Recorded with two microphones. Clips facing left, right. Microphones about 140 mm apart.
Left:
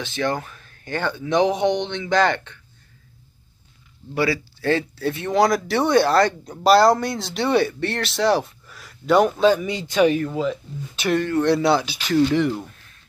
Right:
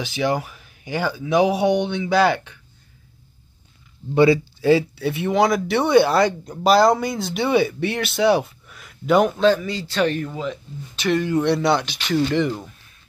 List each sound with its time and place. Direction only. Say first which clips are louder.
0.0 s speech: right 2 dB; 10° right (ahead or behind)
4.1 s speech: right 7 dB; 20° right (ahead or behind)
4.6 s speech: right 4 dB; 5° right (ahead or behind)
9.4 s speech: even; 10° left (ahead or behind)